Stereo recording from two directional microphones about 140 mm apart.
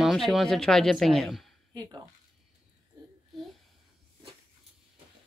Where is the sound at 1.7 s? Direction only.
30° right (ahead or behind).